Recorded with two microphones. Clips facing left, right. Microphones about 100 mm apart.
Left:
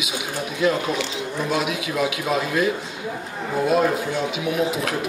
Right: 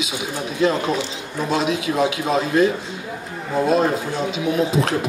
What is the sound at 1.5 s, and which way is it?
Speech, 30° right (ahead or behind).